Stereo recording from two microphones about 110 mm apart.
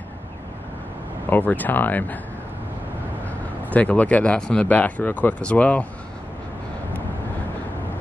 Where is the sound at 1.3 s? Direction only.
15° left (ahead or behind).